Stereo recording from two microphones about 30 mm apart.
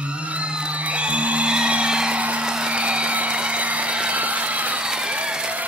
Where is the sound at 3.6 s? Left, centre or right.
Right.